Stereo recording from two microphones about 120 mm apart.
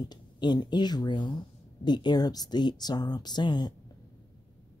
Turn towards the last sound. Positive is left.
turn(degrees=40)  # may be behind; listen again after turning